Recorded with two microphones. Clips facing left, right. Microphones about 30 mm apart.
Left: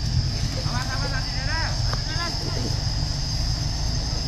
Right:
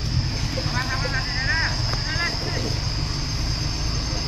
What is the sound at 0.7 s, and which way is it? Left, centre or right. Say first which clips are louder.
Vehicle: right 4 dB; right.